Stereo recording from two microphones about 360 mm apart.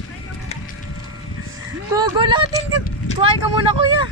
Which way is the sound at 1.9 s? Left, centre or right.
Centre.